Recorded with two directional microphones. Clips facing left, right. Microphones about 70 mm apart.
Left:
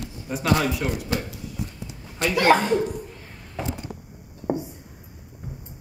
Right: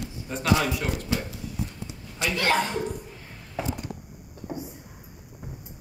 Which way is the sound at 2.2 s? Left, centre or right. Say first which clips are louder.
Left 4 dB; left.